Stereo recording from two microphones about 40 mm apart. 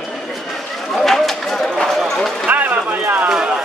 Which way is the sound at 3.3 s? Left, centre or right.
Centre.